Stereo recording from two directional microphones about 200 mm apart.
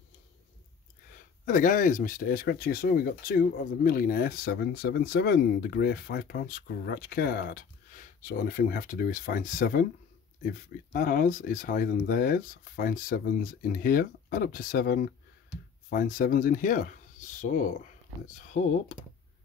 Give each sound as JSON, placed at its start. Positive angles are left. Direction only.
{"t": 1.4, "sound": "speech", "side_deg": 40}